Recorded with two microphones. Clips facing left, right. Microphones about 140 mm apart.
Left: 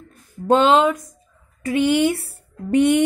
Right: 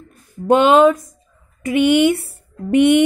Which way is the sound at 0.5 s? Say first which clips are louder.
Right 4 dB; 15° right (ahead or behind).